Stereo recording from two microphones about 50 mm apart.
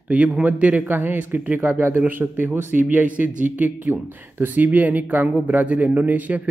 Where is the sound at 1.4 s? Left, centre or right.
Right.